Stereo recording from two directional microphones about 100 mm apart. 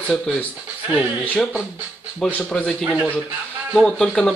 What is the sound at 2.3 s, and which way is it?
Speech, 15° left (ahead or behind).